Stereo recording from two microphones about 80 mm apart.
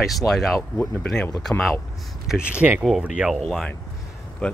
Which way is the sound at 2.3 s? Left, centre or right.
Centre.